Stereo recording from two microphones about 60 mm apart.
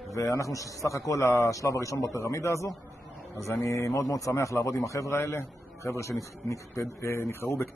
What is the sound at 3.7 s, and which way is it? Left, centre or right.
A man's voice, left.